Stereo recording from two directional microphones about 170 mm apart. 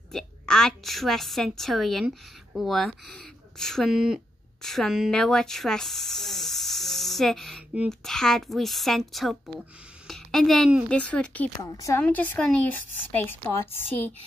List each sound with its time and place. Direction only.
0.1 s a woman's voice: 5° left (ahead or behind)
11.7 s speech: 20° left (ahead or behind)